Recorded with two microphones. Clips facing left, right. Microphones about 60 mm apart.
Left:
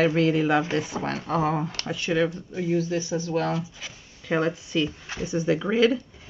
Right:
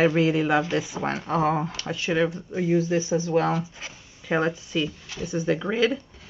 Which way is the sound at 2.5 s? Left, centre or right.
Right.